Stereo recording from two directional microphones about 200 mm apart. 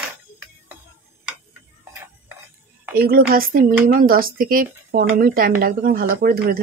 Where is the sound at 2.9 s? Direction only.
50° right (ahead or behind).